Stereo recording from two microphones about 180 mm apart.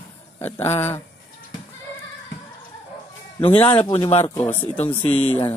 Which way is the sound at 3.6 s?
25° left (ahead or behind).